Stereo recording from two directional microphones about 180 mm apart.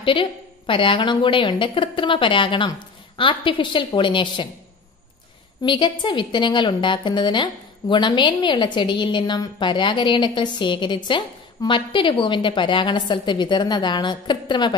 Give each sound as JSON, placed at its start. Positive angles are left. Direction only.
{"t": 0.0, "sound": "a woman's voice", "side_deg": 30}
{"t": 5.6, "sound": "a woman's voice", "side_deg": 25}